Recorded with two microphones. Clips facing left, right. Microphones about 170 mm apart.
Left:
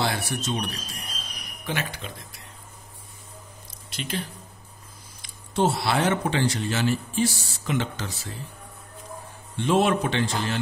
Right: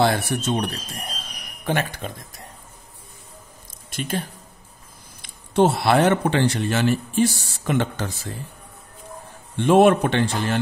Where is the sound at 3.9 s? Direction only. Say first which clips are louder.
Right 4 dB; 50° right (ahead or behind).